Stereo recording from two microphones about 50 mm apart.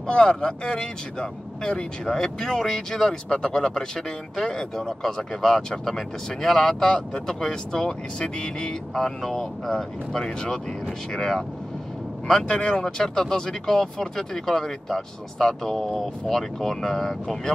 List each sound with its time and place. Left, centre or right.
0.0 s speech: centre